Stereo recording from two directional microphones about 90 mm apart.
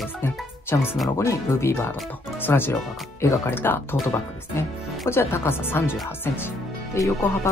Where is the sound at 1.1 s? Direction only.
30° left (ahead or behind).